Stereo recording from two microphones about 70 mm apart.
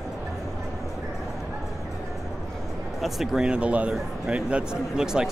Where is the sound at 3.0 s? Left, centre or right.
Centre.